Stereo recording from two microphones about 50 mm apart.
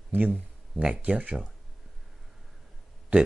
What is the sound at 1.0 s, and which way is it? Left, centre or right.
Speech, right.